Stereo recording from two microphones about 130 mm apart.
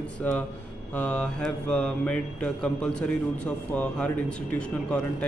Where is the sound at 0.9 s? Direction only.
10° left (ahead or behind).